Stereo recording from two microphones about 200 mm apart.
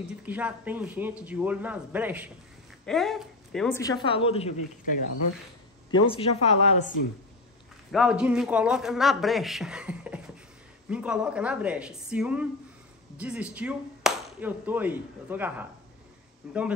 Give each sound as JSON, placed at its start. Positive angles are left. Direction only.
{"t": 0.2, "sound": "speech", "side_deg": -5}
{"t": 2.8, "sound": "speech", "side_deg": 0}
{"t": 3.7, "sound": "speech", "side_deg": 15}
{"t": 5.9, "sound": "speech", "side_deg": 25}
{"t": 7.9, "sound": "a man's voice", "side_deg": -5}